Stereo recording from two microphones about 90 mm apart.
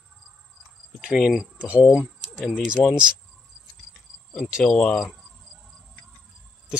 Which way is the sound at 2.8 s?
10° right (ahead or behind).